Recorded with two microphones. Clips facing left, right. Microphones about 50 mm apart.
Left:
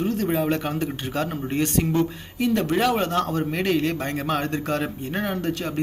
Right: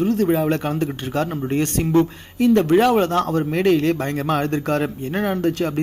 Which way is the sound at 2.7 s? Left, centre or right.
Right.